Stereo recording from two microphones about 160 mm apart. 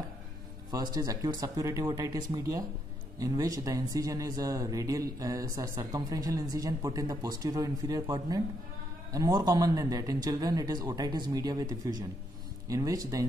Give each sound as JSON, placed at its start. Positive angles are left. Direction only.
{"t": 0.7, "sound": "speech", "side_deg": -25}